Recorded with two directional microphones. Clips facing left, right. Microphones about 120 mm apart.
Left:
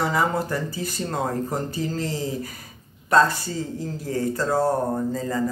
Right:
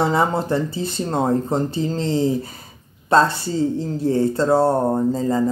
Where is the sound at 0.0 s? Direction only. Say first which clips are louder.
Right 4 dB; 25° right (ahead or behind).